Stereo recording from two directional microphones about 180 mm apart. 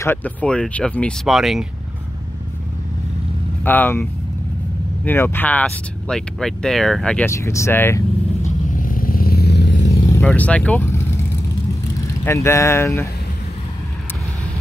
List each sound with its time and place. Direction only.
0.0 s speech: 10° left (ahead or behind)
3.6 s speech: 10° left (ahead or behind)
8.5 s vehicle: 50° left (ahead or behind); by 9.8 s 75° left (ahead or behind)
10.1 s speech: 10° left (ahead or behind)
12.3 s speech: 15° left (ahead or behind)